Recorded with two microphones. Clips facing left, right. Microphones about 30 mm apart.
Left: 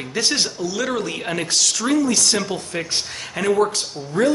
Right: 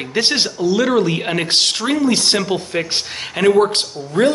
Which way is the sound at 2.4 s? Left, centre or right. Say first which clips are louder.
Right 5 dB; right.